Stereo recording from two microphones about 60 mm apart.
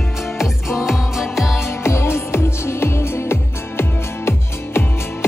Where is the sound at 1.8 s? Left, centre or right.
Left.